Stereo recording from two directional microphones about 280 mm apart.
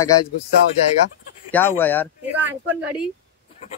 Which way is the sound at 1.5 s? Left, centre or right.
Centre.